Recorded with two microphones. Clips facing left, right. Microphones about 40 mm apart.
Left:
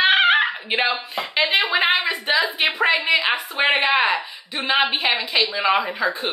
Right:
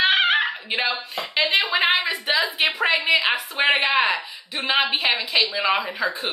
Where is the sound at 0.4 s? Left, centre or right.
Left.